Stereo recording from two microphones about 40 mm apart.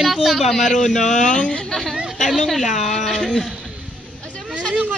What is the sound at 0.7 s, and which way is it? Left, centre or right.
Speech, centre.